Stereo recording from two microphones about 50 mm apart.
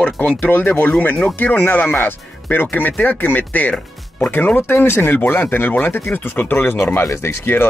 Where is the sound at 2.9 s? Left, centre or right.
Left.